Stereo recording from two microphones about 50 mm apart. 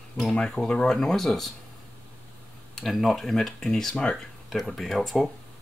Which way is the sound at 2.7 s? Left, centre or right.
Centre.